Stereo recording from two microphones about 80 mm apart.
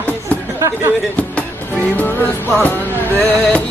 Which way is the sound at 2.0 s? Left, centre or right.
Left.